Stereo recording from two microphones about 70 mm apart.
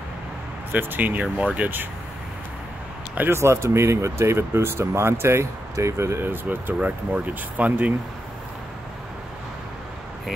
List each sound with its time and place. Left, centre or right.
0.7 s speech: right
3.3 s speech: right